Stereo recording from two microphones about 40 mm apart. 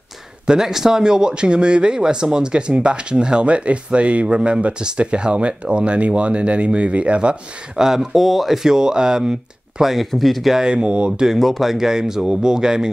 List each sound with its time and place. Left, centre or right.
0.5 s speech: centre
7.7 s speech: centre
8.6 s speech: centre
9.8 s speech: centre
10.5 s speech: centre
11.3 s speech: centre
11.8 s speech: centre